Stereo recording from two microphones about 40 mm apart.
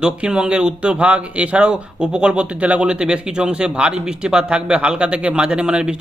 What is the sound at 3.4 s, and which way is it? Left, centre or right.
A man's voice, right.